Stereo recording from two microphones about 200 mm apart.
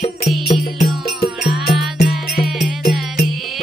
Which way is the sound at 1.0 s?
50° left (ahead or behind).